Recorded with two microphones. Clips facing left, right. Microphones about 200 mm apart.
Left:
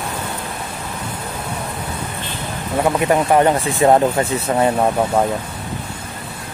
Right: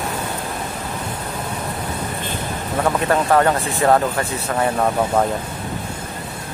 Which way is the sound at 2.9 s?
15° left (ahead or behind).